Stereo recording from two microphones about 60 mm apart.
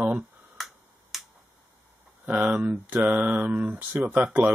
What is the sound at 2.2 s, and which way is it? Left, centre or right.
Speech, right.